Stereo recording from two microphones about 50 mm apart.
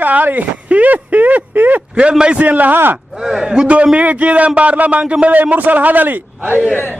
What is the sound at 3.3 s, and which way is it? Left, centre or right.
Speech, centre.